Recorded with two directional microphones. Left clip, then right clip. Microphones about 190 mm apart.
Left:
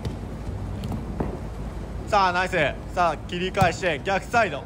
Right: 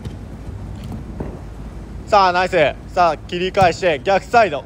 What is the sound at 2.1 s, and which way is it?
Speech, 5° left (ahead or behind).